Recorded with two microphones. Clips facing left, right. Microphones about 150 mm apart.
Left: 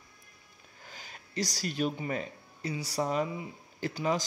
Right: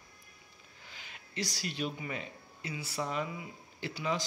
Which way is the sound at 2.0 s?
40° left (ahead or behind).